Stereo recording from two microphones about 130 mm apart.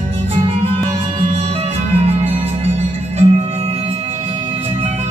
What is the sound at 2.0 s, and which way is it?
Music, 50° right (ahead or behind).